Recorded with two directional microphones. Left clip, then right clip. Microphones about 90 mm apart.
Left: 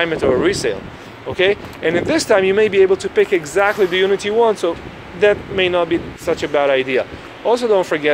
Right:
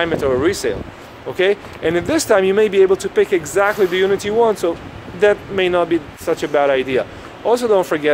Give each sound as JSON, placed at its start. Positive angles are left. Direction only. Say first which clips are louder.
{"t": 0.0, "sound": "speech", "louder": "left 1 dB", "side_deg": -30}
{"t": 1.3, "sound": "speech", "louder": "left 1 dB", "side_deg": -40}